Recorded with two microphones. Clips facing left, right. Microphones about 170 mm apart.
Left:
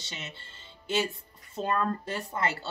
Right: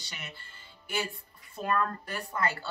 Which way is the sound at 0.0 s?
20° left (ahead or behind).